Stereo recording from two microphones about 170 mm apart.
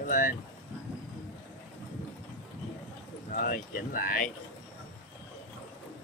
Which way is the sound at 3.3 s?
50° left (ahead or behind).